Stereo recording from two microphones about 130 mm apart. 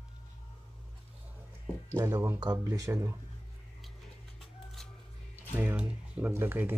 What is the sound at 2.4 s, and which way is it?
Speech, 30° right (ahead or behind).